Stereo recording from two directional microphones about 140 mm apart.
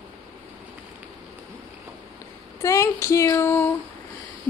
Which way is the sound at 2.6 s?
20° left (ahead or behind).